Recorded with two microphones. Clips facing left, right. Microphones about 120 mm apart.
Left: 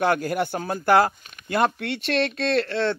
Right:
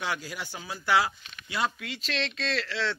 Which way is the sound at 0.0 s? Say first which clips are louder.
Left 12 dB; 55° left (ahead or behind).